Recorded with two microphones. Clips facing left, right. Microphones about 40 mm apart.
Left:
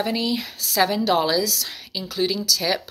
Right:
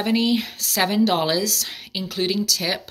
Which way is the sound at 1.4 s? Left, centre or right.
Right.